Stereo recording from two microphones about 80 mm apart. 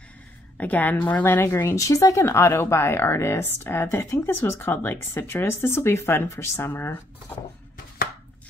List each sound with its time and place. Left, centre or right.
0.6 s speech: centre; by 2.2 s left
2.2 s a woman's voice: left